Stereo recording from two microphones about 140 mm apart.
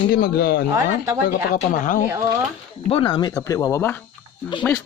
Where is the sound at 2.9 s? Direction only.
40° left (ahead or behind).